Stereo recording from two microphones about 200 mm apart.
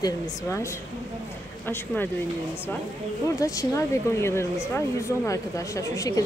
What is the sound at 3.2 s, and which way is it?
A woman's voice, 15° left (ahead or behind).